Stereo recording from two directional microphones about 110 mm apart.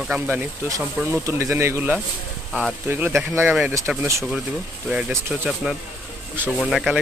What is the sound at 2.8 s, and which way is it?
Speech, 15° right (ahead or behind).